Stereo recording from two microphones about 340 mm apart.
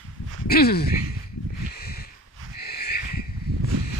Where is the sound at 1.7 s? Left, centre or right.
Left.